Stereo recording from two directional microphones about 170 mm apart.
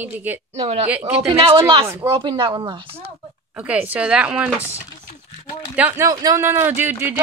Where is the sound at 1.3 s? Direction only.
30° right (ahead or behind).